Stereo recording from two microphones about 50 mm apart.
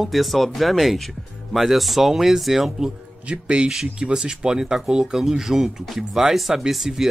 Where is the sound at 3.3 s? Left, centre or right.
Centre.